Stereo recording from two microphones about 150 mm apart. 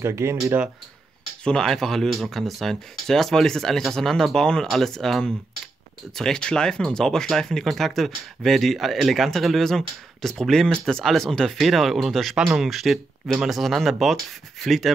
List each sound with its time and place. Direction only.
0.0 s speech: 20° right (ahead or behind)
1.4 s speech: 5° left (ahead or behind)